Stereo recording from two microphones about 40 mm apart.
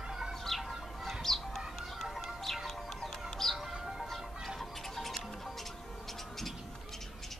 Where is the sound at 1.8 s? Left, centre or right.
Centre.